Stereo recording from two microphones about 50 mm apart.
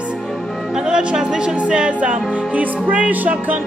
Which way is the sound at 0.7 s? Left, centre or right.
Centre.